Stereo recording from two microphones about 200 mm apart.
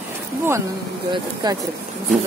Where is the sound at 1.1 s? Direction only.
20° right (ahead or behind).